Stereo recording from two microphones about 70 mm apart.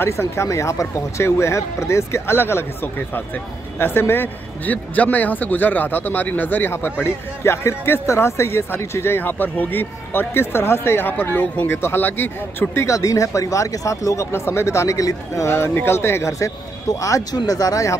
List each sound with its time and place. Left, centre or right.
0.0 s a man's voice: left
11.1 s a man's voice: left
12.8 s speech: left